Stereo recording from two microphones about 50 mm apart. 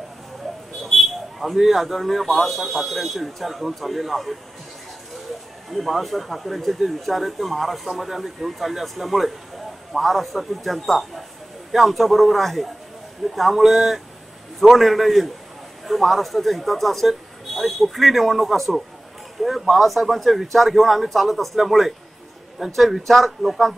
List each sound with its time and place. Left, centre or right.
0.8 s a sound: centre
1.6 s speech: centre
5.7 s speech: centre